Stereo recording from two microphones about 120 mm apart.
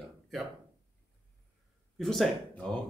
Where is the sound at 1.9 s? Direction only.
Centre (ahead or behind).